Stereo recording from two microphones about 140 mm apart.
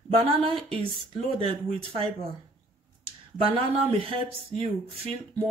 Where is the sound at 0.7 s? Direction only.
45° right (ahead or behind).